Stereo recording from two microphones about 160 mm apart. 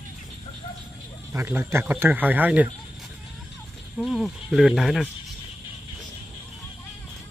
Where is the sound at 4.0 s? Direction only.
Centre (ahead or behind).